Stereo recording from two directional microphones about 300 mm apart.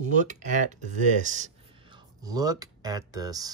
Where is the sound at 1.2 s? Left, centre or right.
Right.